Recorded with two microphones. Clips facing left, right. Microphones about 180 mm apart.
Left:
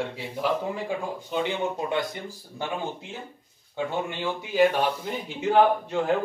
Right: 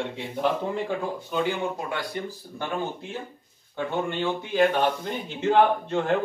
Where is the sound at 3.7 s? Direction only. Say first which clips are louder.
Right 2 dB; 5° left (ahead or behind).